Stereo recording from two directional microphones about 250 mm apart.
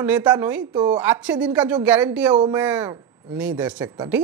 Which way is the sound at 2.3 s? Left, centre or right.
Centre.